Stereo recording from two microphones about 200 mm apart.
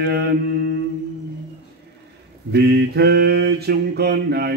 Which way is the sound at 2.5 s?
55° right (ahead or behind).